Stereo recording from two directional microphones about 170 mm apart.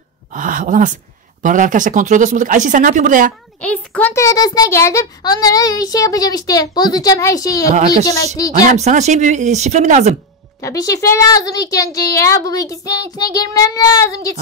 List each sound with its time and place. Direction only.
0.3 s speech: 50° right (ahead or behind)
3.6 s a child's voice: 10° left (ahead or behind)
8.5 s speech: 40° right (ahead or behind)
10.6 s a child's voice: 20° left (ahead or behind)